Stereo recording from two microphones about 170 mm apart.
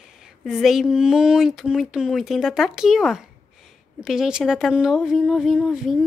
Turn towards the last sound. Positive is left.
turn(degrees=0)  # may be behind; listen again after turning